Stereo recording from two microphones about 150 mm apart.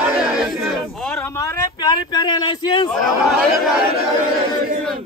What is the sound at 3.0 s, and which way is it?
Speech, 5° right (ahead or behind).